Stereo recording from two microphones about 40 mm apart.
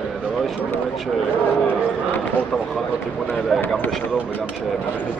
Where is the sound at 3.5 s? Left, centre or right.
Centre.